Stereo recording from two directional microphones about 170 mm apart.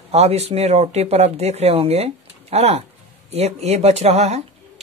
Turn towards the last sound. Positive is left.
turn(degrees=-40)  # may be behind; listen again after turning